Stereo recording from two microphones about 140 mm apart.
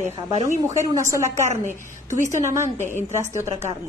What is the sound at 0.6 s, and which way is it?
Speech, 20° right (ahead or behind).